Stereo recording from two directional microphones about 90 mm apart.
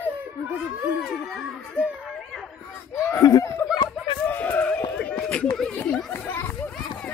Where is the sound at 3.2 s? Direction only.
45° left (ahead or behind).